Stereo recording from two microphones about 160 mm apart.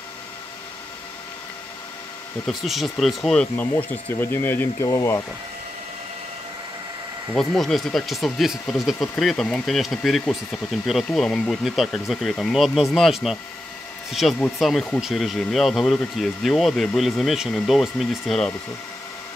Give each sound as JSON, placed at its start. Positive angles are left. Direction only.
{"t": 2.4, "sound": "speech", "side_deg": 0}
{"t": 3.7, "sound": "speech", "side_deg": 15}
{"t": 7.3, "sound": "speech", "side_deg": 0}